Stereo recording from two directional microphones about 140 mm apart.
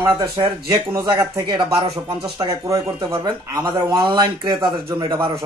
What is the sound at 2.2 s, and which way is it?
Speech, 25° right (ahead or behind).